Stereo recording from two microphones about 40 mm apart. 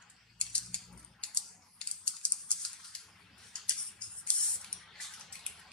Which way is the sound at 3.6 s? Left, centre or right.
Left.